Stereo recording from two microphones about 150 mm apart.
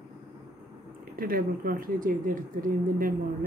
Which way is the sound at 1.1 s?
75° right (ahead or behind).